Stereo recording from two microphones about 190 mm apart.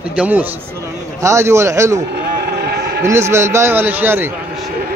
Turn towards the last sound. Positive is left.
turn(degrees=-10)  # may be behind; listen again after turning